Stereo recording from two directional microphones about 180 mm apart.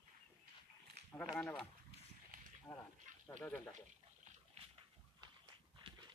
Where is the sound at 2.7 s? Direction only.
20° left (ahead or behind).